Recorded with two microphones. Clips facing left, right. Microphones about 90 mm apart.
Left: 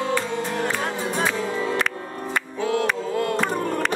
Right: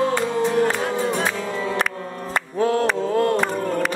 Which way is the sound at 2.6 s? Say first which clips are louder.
Right 4 dB; 40° right (ahead or behind).